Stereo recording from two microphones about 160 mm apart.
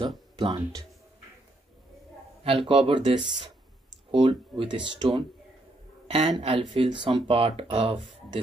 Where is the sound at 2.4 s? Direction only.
35° right (ahead or behind).